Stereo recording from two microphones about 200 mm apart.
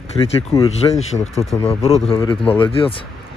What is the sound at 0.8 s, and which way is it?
Speech, 20° left (ahead or behind).